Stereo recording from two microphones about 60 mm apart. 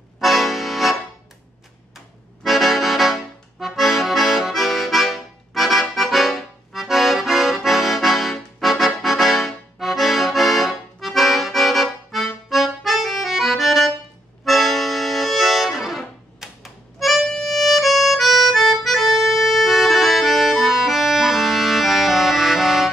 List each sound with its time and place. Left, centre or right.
0.2 s accordion: centre
2.0 s accordion: centre